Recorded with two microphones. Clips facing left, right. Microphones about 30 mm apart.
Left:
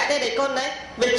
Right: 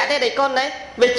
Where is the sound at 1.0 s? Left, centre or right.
Right.